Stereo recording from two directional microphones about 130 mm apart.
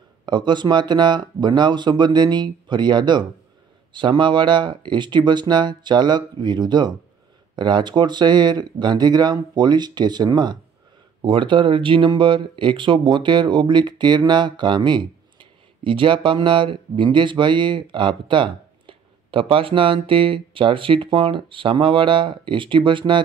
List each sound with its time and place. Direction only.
0.2 s speech: 35° right (ahead or behind)